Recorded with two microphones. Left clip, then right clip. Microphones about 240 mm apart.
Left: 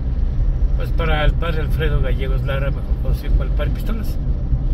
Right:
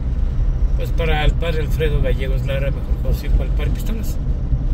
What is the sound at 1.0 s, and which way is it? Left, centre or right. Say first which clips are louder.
Speech: even; centre.